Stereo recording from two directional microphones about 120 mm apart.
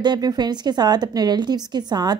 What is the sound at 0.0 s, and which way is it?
A woman's voice, 35° right (ahead or behind).